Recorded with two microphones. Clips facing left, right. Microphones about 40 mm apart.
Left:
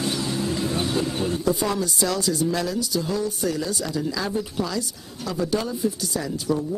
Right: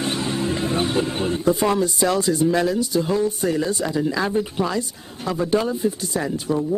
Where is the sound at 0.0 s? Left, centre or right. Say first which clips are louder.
Right 2 dB; right.